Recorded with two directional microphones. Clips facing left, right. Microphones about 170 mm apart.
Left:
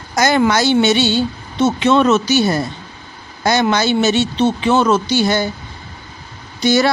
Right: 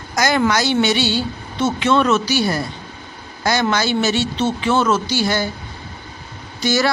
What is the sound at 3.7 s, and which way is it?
Speech, 20° left (ahead or behind).